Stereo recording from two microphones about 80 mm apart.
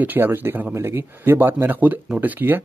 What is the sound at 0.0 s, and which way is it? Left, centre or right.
A man's voice, right.